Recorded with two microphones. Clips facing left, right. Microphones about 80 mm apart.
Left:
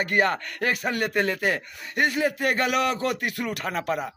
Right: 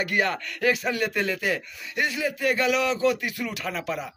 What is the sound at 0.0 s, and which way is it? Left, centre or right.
A man's voice, left.